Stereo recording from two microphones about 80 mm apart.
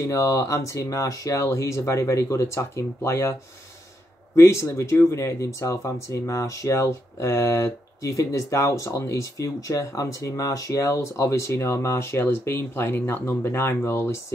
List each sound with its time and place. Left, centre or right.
0.0 s speech: left
4.4 s speech: left